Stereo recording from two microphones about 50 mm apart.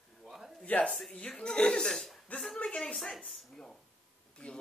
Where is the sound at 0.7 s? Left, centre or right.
Centre.